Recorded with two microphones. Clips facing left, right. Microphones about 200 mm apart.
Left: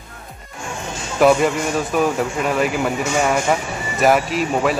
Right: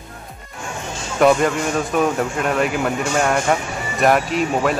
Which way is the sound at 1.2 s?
5° left (ahead or behind).